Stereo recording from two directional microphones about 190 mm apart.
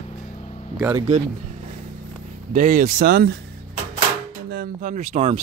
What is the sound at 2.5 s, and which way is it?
Speech, 45° right (ahead or behind).